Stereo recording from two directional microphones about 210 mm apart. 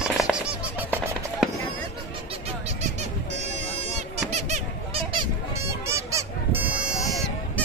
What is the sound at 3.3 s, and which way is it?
Bagpipes, 35° right (ahead or behind).